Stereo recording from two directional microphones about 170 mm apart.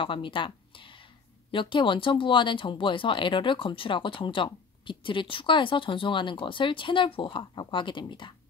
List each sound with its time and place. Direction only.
0.0 s speech: 30° left (ahead or behind)